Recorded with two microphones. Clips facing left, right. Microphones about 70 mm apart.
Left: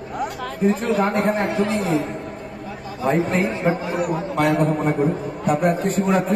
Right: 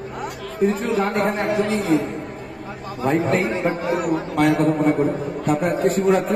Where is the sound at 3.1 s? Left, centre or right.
Centre.